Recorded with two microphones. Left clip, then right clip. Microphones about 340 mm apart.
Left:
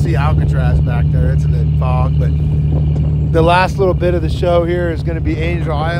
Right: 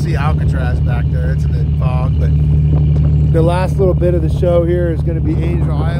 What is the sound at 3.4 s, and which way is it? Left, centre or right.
Speech, left.